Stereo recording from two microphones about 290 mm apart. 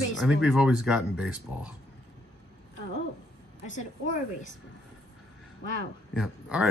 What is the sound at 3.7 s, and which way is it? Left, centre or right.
Speech, left.